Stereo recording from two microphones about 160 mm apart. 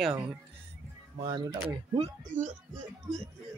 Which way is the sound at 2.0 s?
50° right (ahead or behind).